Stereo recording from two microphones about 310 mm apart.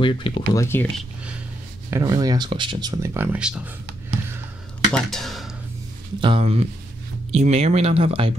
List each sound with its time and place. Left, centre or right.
0.0 s speech: centre
1.9 s speech: centre
4.9 s speech: centre
6.2 s speech: centre